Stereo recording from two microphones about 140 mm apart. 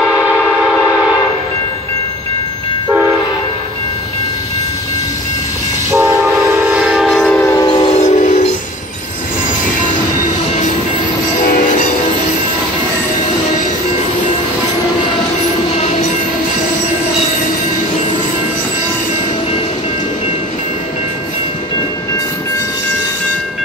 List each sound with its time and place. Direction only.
0.0 s train: 5° right (ahead or behind)
5.9 s train: 20° right (ahead or behind)
6.6 s train: 5° right (ahead or behind); by 7.5 s 10° left (ahead or behind)
7.5 s train: 30° left (ahead or behind)
7.9 s train: 55° left (ahead or behind)
11.4 s music: 70° left (ahead or behind)